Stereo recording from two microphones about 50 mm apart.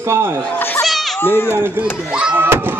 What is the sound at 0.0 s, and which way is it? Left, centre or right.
Speech, right.